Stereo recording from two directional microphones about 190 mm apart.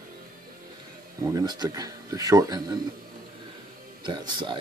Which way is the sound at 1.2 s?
20° right (ahead or behind).